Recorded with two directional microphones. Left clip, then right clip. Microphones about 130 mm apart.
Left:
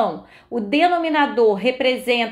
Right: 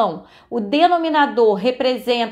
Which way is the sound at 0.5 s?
35° right (ahead or behind).